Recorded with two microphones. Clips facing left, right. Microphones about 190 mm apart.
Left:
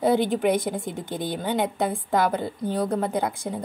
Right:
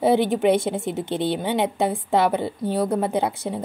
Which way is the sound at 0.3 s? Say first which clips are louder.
Right 3 dB; 25° right (ahead or behind).